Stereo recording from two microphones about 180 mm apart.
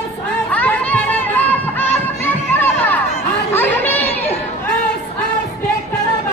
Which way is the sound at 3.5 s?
10° left (ahead or behind).